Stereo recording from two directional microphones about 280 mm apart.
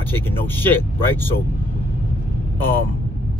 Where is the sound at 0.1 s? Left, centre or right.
Centre.